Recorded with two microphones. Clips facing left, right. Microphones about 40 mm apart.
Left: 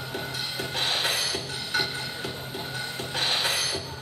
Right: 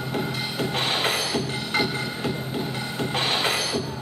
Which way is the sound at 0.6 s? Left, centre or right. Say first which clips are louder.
Right 3 dB; right.